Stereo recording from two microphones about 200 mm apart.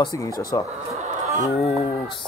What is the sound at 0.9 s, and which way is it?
Chicken, 35° right (ahead or behind).